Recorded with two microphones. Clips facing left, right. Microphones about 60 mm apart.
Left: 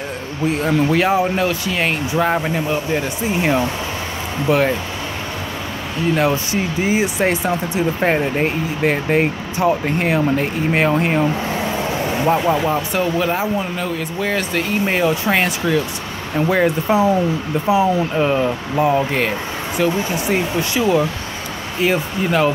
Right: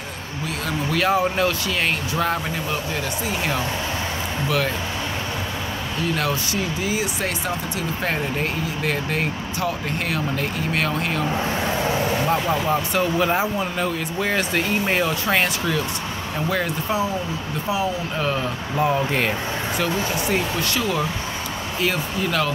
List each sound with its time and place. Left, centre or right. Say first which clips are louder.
0.5 s speech: left 9 dB; left
4.5 s speech: left 8 dB; left
6.1 s speech: left 6 dB; left
12.3 s speech: left 8 dB; centre
16.3 s speech: left 8 dB; centre